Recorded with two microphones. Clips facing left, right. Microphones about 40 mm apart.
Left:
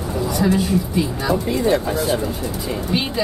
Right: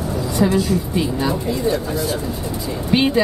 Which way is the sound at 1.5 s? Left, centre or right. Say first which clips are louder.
Left 2 dB; left.